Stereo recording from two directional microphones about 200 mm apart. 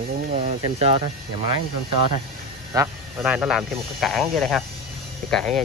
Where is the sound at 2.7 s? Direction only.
15° right (ahead or behind).